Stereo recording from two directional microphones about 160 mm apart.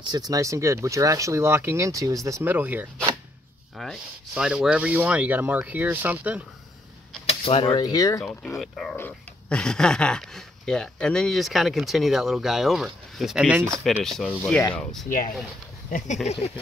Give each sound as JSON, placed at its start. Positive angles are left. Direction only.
{"t": 0.0, "sound": "speech", "side_deg": -25}
{"t": 3.7, "sound": "speech", "side_deg": 0}
{"t": 7.2, "sound": "speech", "side_deg": 35}
{"t": 8.2, "sound": "speech", "side_deg": 5}
{"t": 16.3, "sound": "a sound", "side_deg": 40}